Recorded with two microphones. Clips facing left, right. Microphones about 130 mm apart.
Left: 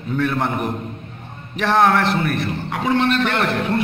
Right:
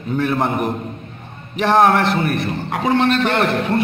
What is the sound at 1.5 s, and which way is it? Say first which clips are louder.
Speech: right 2 dB; 20° right (ahead or behind).